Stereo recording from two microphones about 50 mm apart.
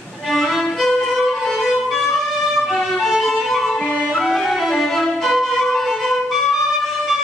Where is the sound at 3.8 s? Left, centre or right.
Left.